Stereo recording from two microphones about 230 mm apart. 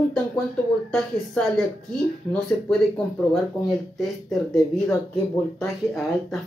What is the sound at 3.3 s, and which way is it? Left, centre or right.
Speech, centre.